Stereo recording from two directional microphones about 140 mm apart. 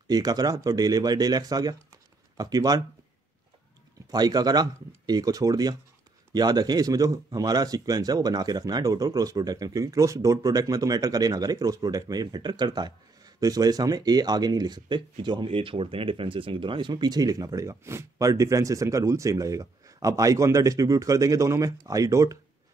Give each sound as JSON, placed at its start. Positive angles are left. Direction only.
{"t": 0.1, "sound": "speech", "side_deg": -25}
{"t": 4.1, "sound": "speech", "side_deg": -30}